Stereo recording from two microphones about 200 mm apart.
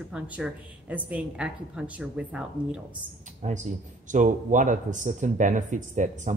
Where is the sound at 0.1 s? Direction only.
5° right (ahead or behind).